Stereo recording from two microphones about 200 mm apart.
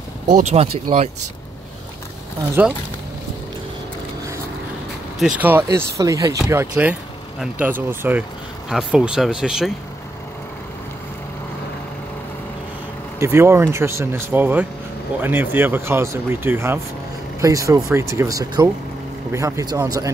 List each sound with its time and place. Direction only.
0.3 s speech: 35° right (ahead or behind)
2.6 s speech: 10° right (ahead or behind)
5.2 s speech: 10° right (ahead or behind)
13.2 s speech: 10° right (ahead or behind)